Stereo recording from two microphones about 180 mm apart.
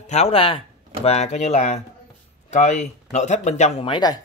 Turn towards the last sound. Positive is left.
turn(degrees=20)  # may be behind; listen again after turning